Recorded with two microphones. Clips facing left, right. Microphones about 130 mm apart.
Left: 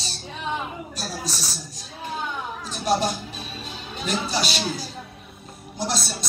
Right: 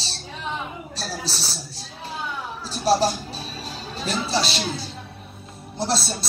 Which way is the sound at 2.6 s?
35° right (ahead or behind).